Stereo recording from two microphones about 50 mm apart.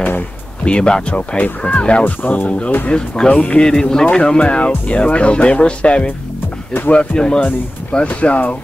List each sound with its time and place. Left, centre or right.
0.7 s speech: centre
2.9 s speech: centre
3.3 s speech: left
3.6 s speech: centre